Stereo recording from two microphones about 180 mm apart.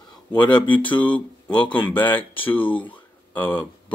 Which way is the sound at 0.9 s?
10° left (ahead or behind).